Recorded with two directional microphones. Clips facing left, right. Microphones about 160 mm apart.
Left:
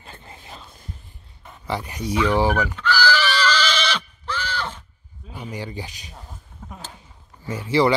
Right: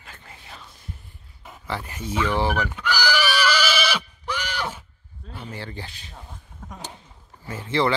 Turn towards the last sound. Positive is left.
turn(degrees=10)  # may be behind; listen again after turning